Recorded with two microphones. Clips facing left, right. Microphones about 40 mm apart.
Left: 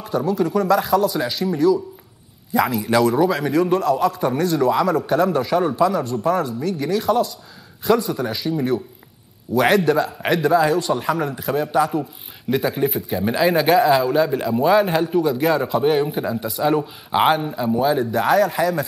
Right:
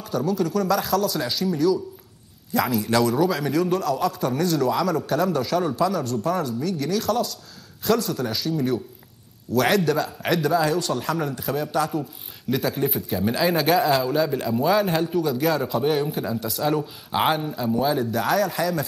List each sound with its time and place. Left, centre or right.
0.0 s a man's voice: centre